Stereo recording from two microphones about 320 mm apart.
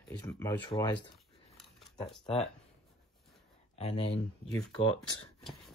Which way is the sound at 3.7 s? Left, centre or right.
Centre.